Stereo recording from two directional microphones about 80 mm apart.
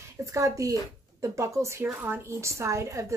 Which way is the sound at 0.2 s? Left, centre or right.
Right.